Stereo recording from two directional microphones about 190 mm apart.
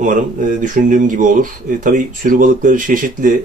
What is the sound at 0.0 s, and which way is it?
Speech, 40° right (ahead or behind).